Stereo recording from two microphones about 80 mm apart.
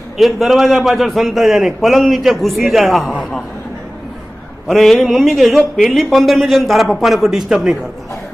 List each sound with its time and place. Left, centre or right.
0.2 s a man's voice: centre
4.6 s a man's voice: centre